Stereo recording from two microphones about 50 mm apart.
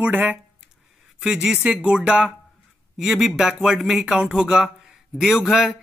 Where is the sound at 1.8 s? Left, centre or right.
Right.